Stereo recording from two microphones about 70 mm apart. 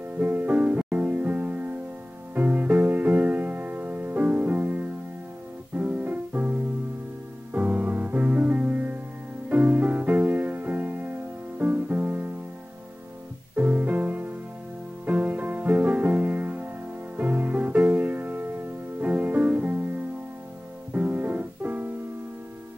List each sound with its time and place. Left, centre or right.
0.2 s music: right
13.6 s music: right
20.9 s music: right